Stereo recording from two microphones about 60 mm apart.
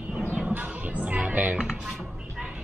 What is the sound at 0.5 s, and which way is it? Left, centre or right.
Music, right.